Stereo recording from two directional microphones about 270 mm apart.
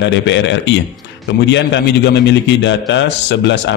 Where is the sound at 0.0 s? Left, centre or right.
Left.